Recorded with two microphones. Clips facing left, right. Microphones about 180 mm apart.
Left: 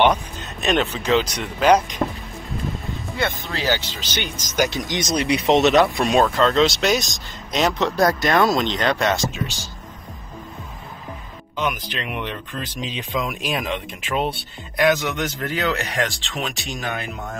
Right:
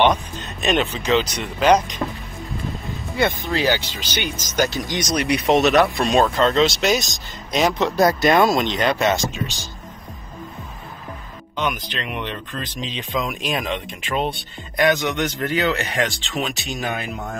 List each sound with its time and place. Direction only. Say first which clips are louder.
0.0 s music: even; 10° left (ahead or behind)
0.7 s speech: even; centre (ahead or behind)
3.2 s speech: right 5 dB; 15° right (ahead or behind)
4.6 s speech: even; 20° left (ahead or behind)
6.0 s speech: even; centre (ahead or behind)
11.5 s speech: even; 5° left (ahead or behind)